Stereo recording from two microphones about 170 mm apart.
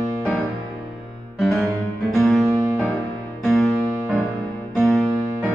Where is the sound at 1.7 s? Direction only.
15° right (ahead or behind).